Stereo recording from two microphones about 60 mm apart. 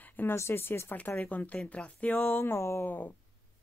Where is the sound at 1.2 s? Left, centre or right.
Left.